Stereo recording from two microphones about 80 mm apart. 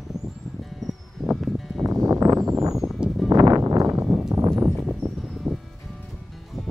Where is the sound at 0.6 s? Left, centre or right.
Centre.